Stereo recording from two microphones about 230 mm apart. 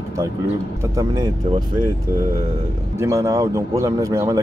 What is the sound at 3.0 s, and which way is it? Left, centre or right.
Speech, centre.